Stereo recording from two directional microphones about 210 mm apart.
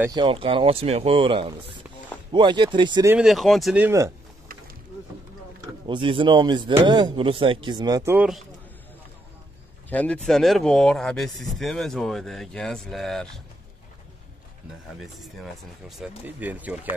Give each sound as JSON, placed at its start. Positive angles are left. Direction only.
{"t": 0.1, "sound": "speech", "side_deg": -25}
{"t": 3.1, "sound": "speech", "side_deg": -5}
{"t": 5.9, "sound": "speech", "side_deg": -25}
{"t": 9.8, "sound": "speech", "side_deg": 5}
{"t": 15.0, "sound": "speech", "side_deg": 0}